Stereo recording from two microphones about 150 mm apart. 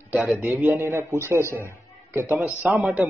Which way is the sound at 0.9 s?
15° right (ahead or behind).